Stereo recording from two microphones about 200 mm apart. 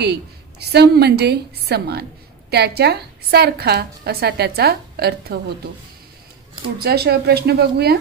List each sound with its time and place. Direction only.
0.0 s a woman's voice: 55° right (ahead or behind)
6.8 s a woman's voice: 50° right (ahead or behind)